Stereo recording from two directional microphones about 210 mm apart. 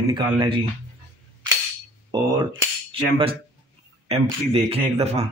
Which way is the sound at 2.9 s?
25° right (ahead or behind).